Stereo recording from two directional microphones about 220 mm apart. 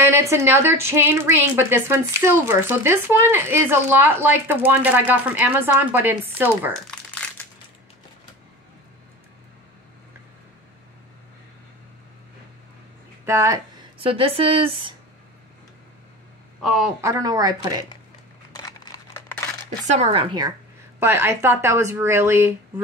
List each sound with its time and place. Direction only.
0.0 s speech: 10° right (ahead or behind)
7.2 s crushing: 5° left (ahead or behind)
13.2 s a sound: 15° right (ahead or behind)
14.0 s speech: 25° right (ahead or behind)
16.6 s a woman's voice: centre (ahead or behind)
17.0 s speech: 15° right (ahead or behind)
18.5 s crumpling: 15° left (ahead or behind)
19.9 s speech: 30° right (ahead or behind)
21.0 s speech: 10° right (ahead or behind)